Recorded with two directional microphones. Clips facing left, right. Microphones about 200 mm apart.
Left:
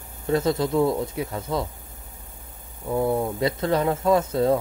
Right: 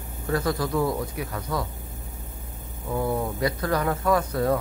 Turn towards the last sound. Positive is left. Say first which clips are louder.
# left 3 dB
turn(degrees=25)  # may be behind; listen again after turning